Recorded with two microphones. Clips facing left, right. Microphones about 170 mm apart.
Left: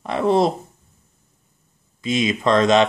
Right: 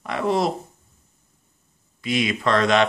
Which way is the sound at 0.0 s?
25° left (ahead or behind).